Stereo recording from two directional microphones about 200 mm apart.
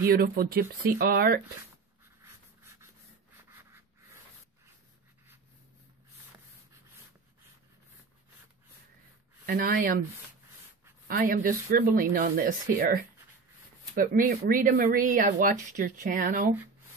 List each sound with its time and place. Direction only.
0.0 s speech: 50° right (ahead or behind)
2.6 s rub: 15° right (ahead or behind)
9.5 s speech: 50° right (ahead or behind)
11.1 s speech: 45° right (ahead or behind)